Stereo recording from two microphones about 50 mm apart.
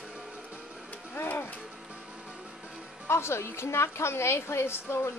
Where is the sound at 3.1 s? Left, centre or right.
Left.